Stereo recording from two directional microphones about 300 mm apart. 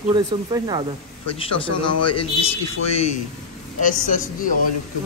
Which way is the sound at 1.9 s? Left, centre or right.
Left.